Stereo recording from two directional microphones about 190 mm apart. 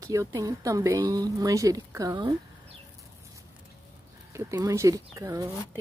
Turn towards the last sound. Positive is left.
turn(degrees=-15)  # may be behind; listen again after turning